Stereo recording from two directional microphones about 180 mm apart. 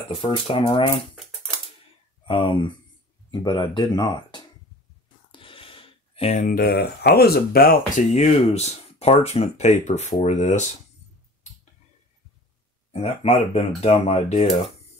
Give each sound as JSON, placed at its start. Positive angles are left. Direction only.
{"t": 0.1, "sound": "speech", "side_deg": 30}
{"t": 2.2, "sound": "speech", "side_deg": 30}
{"t": 12.9, "sound": "speech", "side_deg": 35}